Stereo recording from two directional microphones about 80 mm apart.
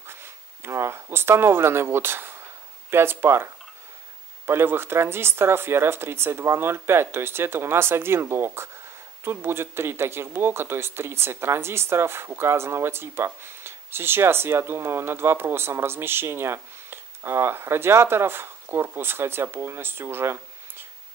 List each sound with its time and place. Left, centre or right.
0.0 s a sound: right
1.1 s speech: right
4.5 s speech: right